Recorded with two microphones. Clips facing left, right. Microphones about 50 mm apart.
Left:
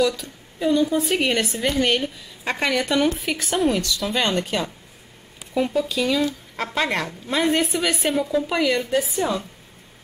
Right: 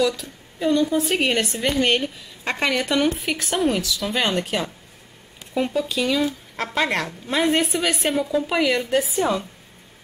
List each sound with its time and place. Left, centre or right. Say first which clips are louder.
0.0 s a woman's voice: even; centre
9.2 s speech: right 2 dB; right